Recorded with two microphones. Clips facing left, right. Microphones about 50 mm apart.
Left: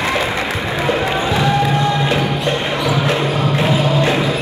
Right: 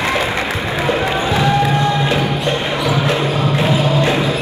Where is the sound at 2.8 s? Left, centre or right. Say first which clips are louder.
Even; right.